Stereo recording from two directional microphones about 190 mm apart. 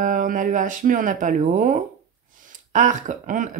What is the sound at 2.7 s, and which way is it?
Speech, 40° right (ahead or behind).